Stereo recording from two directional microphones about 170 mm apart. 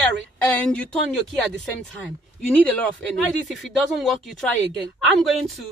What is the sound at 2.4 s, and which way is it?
Speech, 5° left (ahead or behind).